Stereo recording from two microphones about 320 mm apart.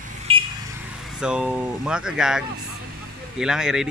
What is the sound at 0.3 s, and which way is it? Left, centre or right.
Vehicle, centre.